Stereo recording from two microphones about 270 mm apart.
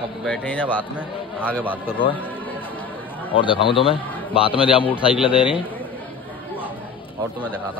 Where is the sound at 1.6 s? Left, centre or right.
Centre.